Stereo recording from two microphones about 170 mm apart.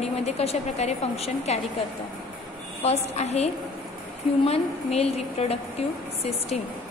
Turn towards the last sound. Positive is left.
turn(degrees=35)  # may be behind; listen again after turning